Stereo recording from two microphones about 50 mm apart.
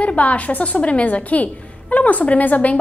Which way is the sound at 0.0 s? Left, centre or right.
Left.